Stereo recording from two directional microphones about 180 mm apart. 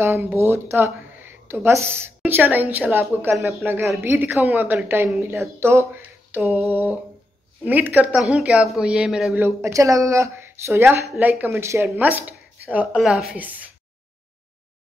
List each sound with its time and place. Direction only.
0.0 s a woman's voice: 10° right (ahead or behind)